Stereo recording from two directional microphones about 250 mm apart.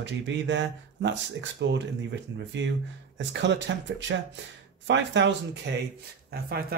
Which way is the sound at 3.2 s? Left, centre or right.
Right.